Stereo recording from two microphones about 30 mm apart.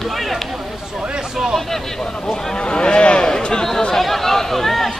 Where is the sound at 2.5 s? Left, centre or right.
Left.